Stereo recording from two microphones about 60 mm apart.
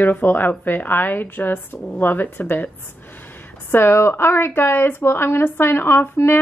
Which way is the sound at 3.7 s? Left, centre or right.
Left.